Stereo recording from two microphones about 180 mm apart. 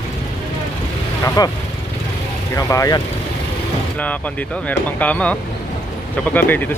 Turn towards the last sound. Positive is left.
turn(degrees=10)  # may be behind; listen again after turning